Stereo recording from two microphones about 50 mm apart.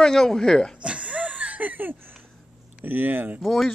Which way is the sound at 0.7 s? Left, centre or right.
Right.